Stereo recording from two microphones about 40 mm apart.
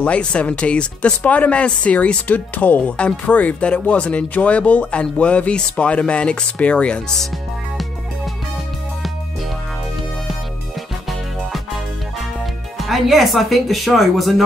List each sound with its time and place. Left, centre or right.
0.0 s speech: left
2.8 s speech: left
12.7 s speech: centre